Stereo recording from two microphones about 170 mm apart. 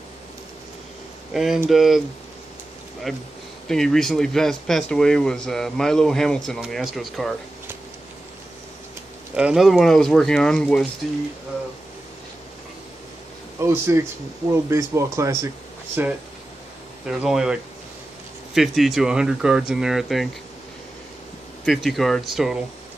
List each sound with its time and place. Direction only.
1.3 s speech: centre (ahead or behind)
3.1 s speech: centre (ahead or behind)
9.3 s speech: 5° right (ahead or behind)
13.6 s speech: 15° right (ahead or behind)
21.6 s speech: centre (ahead or behind)